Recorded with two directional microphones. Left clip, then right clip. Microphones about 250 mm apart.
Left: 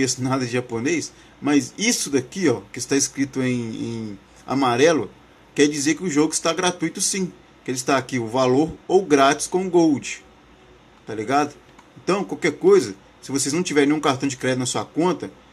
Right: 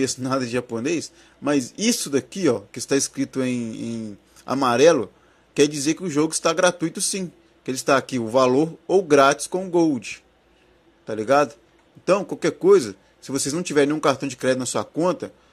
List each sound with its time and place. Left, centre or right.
0.0 s speech: centre